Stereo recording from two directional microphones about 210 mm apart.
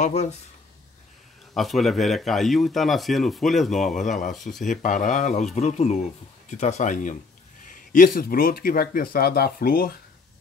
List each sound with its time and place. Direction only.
0.0 s speech: 30° left (ahead or behind)
1.5 s speech: centre (ahead or behind)
4.6 s speech: 35° left (ahead or behind)